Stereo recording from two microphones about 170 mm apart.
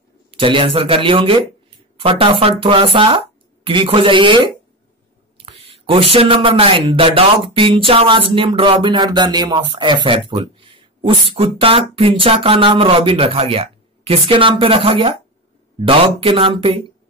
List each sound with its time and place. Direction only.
0.3 s speech: 30° right (ahead or behind)
6.1 s speech: 30° right (ahead or behind)
16.2 s speech: 30° right (ahead or behind)